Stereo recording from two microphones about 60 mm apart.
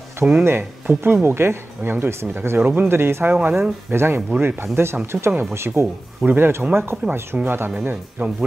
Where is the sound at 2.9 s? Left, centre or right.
Right.